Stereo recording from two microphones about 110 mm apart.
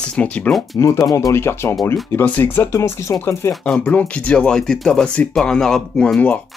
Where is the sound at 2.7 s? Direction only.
25° left (ahead or behind).